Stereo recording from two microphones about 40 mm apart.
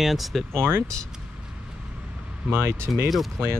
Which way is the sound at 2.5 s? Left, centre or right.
Right.